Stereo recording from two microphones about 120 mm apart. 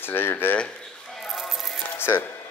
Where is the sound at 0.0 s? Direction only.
15° left (ahead or behind).